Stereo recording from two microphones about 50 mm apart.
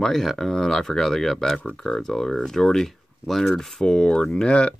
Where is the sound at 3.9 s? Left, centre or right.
Centre.